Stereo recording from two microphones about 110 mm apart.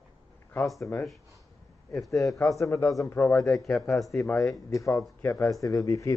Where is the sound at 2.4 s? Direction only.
30° left (ahead or behind).